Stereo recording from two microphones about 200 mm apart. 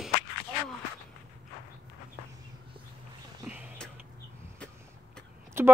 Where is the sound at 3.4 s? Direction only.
5° right (ahead or behind).